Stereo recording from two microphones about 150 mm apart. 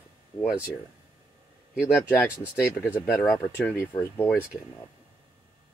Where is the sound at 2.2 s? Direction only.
20° left (ahead or behind).